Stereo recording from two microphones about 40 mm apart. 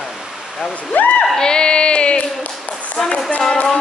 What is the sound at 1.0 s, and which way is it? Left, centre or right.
Speech, left.